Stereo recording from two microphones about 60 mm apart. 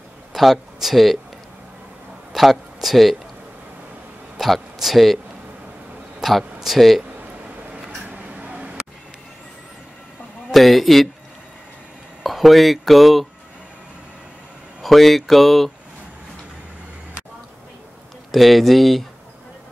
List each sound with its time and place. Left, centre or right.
0.3 s speech: centre
2.3 s speech: centre
4.4 s speech: centre
6.2 s speech: centre
7.7 s a sound: right
10.5 s speech: centre
12.2 s speech: centre
14.8 s speech: centre
18.3 s speech: centre